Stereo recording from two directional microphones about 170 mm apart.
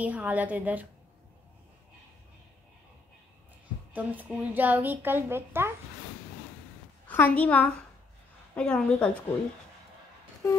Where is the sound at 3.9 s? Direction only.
10° right (ahead or behind).